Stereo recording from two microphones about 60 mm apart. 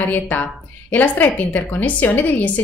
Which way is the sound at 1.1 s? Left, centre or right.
Left.